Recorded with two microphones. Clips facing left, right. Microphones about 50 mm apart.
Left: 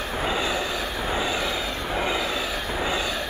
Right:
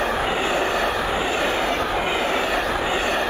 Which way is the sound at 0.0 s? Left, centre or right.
Right.